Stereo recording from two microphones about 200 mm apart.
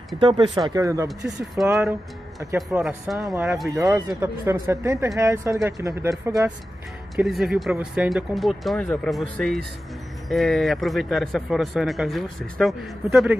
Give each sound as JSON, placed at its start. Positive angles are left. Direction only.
{"t": 0.2, "sound": "speech", "side_deg": -25}
{"t": 1.0, "sound": "a man's voice", "side_deg": 0}
{"t": 7.2, "sound": "a man's voice", "side_deg": 0}